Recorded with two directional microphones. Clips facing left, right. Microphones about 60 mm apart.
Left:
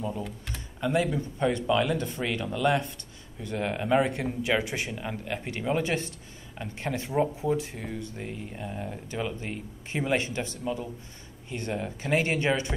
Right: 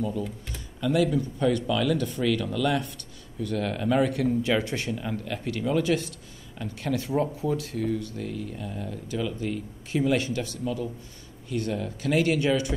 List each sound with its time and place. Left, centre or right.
0.7 s speech: left